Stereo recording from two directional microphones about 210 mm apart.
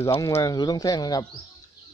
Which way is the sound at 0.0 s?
15° left (ahead or behind).